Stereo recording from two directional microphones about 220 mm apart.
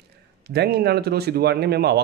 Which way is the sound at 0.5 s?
45° right (ahead or behind).